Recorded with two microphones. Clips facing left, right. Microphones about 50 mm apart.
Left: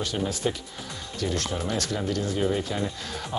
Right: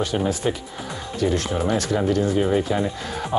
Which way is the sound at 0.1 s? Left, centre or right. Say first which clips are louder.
Right 5 dB; centre.